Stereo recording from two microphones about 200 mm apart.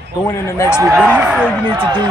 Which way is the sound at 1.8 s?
20° right (ahead or behind).